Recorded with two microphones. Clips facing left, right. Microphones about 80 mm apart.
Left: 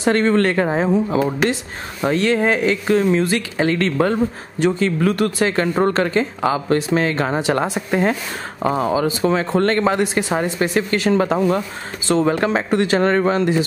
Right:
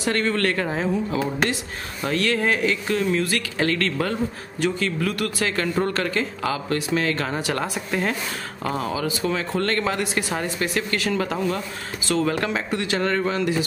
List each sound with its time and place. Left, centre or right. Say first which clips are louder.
0.0 s speech: left 7 dB; left